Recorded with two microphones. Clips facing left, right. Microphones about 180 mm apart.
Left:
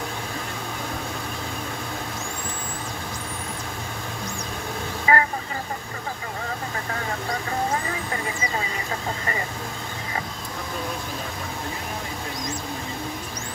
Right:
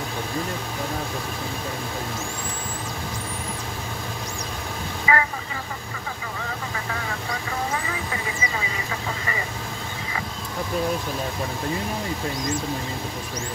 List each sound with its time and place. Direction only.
5.1 s speech: 40° left (ahead or behind)